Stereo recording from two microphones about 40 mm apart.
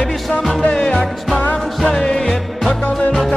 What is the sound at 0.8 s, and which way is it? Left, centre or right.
Music, centre.